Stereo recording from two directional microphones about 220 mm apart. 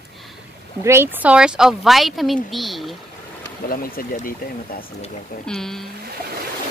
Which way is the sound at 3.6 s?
40° left (ahead or behind).